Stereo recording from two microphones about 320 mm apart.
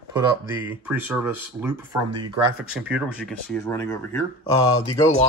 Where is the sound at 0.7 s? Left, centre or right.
Centre.